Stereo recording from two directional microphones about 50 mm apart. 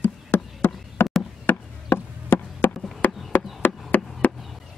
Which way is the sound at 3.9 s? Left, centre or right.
Left.